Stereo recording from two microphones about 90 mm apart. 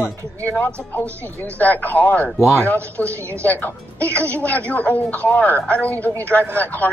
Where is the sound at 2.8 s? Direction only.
30° right (ahead or behind).